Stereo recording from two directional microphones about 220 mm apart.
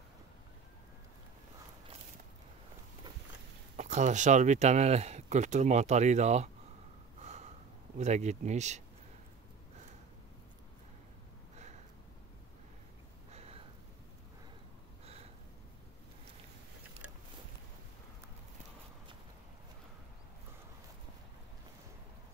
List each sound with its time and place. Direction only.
3.7 s speech: 30° right (ahead or behind)
7.2 s snort: 30° right (ahead or behind)
8.0 s speech: 30° right (ahead or behind)
13.3 s a sound: 30° right (ahead or behind)